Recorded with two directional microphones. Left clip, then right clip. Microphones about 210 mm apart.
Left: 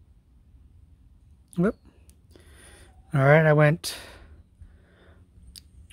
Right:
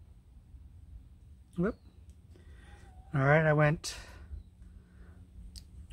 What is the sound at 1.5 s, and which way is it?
Speech, 45° left (ahead or behind).